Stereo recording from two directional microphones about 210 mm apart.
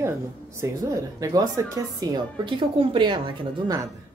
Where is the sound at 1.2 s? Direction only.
15° right (ahead or behind).